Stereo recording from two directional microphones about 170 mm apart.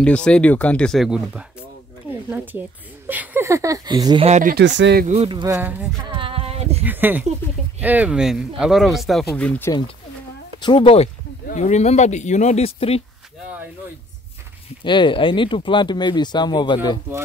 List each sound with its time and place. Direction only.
0.0 s speech: 5° left (ahead or behind)
2.0 s a sound: 10° right (ahead or behind)
3.1 s speech: 10° right (ahead or behind)
4.3 s speech: 50° right (ahead or behind)
4.6 s speech: 90° right
5.0 s speech: 40° right (ahead or behind)
5.3 s speech: 20° right (ahead or behind)
5.6 s speech: 10° right (ahead or behind)
6.0 s a sound: 30° right (ahead or behind)
6.8 s speech: 10° right (ahead or behind)
9.3 s speech: 15° left (ahead or behind)
10.6 s speech: 30° left (ahead or behind)
11.4 s speech: 45° left (ahead or behind)
14.8 s speech: 30° left (ahead or behind)